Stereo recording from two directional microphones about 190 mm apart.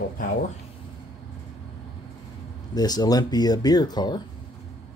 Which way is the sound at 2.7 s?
20° left (ahead or behind).